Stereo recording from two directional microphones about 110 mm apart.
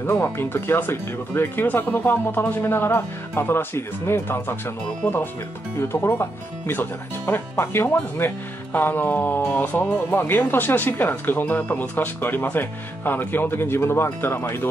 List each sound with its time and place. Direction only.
0.0 s speech: 20° left (ahead or behind)